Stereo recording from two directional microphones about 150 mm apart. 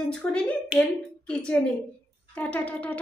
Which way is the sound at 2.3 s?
10° left (ahead or behind).